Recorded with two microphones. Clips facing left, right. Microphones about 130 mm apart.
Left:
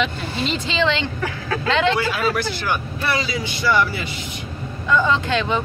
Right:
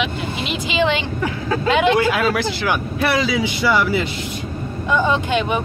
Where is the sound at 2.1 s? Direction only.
90° right.